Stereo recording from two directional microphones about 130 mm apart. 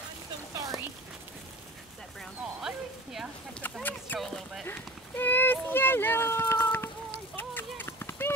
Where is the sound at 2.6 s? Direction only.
5° right (ahead or behind).